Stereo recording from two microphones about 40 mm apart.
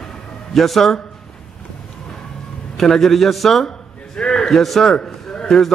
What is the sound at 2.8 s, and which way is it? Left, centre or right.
Speech, centre.